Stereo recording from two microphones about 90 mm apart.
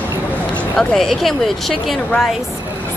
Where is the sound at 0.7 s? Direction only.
5° left (ahead or behind).